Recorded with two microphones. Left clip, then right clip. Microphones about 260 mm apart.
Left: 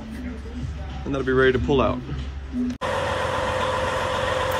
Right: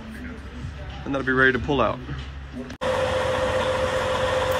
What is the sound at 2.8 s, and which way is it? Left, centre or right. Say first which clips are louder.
Vehicle: right 3 dB; centre.